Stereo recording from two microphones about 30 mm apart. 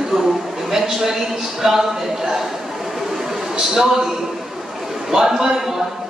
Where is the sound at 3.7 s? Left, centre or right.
Centre.